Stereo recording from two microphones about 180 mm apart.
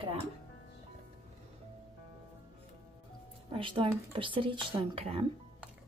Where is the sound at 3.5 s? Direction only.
25° right (ahead or behind).